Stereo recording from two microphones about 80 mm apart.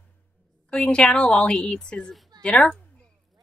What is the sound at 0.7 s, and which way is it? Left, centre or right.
Speech, centre.